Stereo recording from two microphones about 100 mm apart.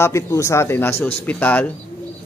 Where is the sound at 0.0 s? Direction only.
30° left (ahead or behind).